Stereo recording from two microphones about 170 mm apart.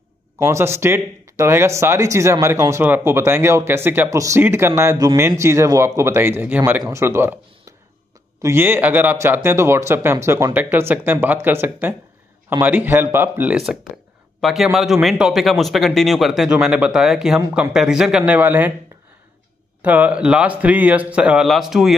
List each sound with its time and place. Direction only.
0.4 s speech: 15° right (ahead or behind)
8.4 s a man's voice: 15° right (ahead or behind)
19.8 s speech: 10° right (ahead or behind)